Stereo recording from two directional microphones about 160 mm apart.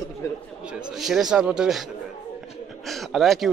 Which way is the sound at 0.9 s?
Centre (ahead or behind).